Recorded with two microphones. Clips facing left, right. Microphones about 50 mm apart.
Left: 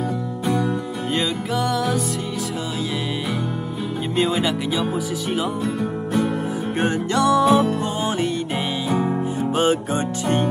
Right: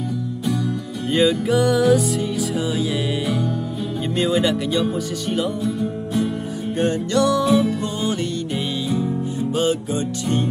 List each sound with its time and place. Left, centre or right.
1.1 s music: centre
4.2 s music: centre
5.6 s music: left
6.8 s music: left
7.4 s music: left